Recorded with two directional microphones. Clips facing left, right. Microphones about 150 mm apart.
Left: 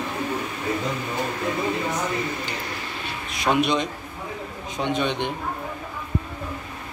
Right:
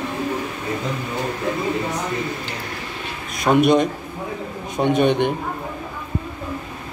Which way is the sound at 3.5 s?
50° right (ahead or behind).